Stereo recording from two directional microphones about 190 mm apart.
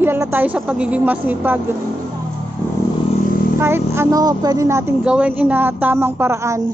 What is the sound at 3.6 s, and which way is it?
Speech, 15° right (ahead or behind).